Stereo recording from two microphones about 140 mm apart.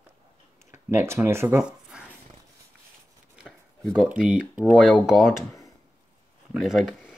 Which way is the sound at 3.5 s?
Centre (ahead or behind).